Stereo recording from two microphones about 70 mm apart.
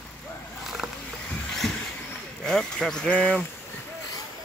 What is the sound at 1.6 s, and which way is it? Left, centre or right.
Vehicle, centre.